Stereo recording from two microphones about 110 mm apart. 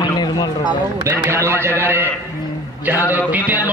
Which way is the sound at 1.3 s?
25° right (ahead or behind).